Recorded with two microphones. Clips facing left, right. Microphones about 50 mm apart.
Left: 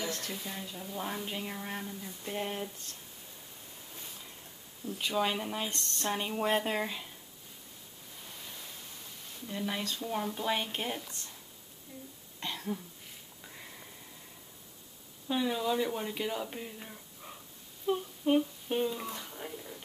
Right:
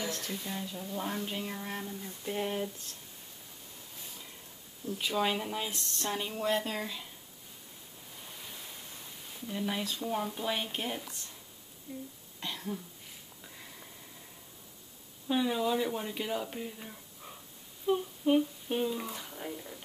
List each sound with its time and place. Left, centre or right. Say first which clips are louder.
0.0 s speech: even; centre
4.8 s speech: even; centre
6.1 s speech: left 1 dB; centre
9.5 s speech: right 1 dB; centre
12.4 s throat clearing: left 1 dB; centre
15.2 s speech: right 1 dB; centre